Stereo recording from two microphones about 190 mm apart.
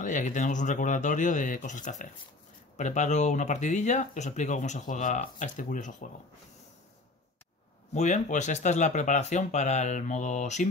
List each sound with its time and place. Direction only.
0.0 s speech: 40° left (ahead or behind)
7.9 s speech: 40° left (ahead or behind)